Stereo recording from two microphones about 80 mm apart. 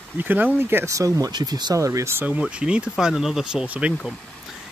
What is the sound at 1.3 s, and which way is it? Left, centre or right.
Speech, right.